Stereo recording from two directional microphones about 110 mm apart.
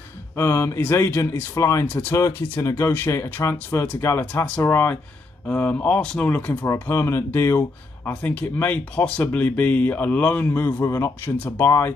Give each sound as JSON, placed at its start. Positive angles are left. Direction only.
{"t": 0.4, "sound": "speech", "side_deg": 25}